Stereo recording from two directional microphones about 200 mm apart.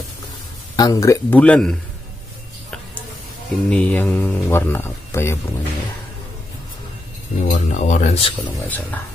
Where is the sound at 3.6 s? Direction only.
5° left (ahead or behind).